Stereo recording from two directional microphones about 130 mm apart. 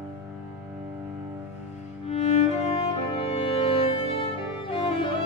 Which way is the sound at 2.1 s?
60° left (ahead or behind).